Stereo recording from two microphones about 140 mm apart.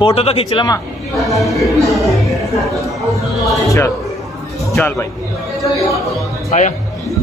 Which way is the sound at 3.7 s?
20° left (ahead or behind).